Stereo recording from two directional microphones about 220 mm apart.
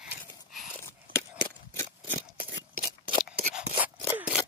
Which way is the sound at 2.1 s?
45° right (ahead or behind).